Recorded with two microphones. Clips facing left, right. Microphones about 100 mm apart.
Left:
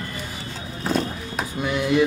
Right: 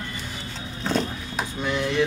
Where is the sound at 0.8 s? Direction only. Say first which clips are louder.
Left 1 dB; 5° left (ahead or behind).